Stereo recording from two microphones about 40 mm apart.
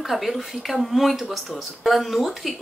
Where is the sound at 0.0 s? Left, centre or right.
Centre.